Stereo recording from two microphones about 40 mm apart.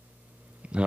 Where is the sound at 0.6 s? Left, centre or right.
Right.